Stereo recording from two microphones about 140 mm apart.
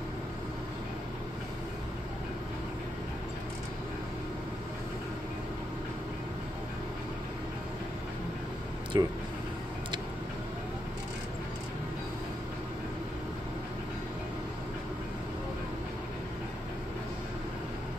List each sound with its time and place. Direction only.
8.9 s speech: 30° right (ahead or behind)